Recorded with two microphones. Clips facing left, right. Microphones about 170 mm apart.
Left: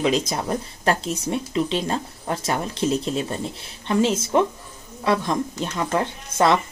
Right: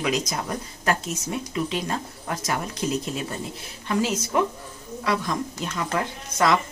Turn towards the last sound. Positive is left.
turn(degrees=30)  # may be behind; listen again after turning